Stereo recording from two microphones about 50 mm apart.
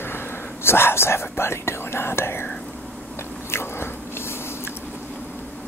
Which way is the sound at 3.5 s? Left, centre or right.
Left.